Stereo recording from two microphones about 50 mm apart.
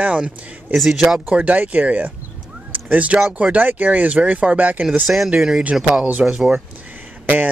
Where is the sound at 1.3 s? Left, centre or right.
Right.